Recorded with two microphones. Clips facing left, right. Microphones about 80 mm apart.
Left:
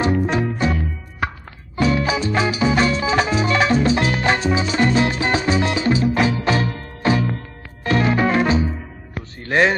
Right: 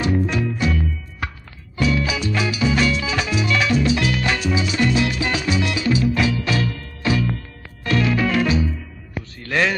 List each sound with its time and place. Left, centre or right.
0.3 s music: left
1.8 s music: left
9.4 s a sound: left